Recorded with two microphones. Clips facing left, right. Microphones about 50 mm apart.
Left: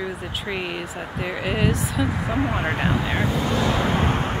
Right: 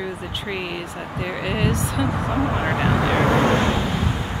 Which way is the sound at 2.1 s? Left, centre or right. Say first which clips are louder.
Right 2 dB; right.